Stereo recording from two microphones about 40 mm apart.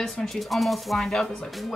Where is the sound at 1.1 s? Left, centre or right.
Centre.